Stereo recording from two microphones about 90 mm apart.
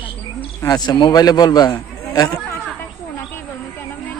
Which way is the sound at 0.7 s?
50° left (ahead or behind).